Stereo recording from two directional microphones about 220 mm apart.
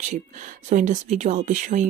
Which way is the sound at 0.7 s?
35° right (ahead or behind).